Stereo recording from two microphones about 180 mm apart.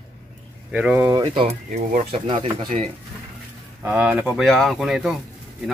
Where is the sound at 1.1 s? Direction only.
30° right (ahead or behind).